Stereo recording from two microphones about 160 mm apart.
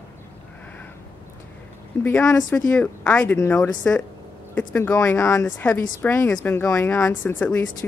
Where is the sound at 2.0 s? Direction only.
10° left (ahead or behind).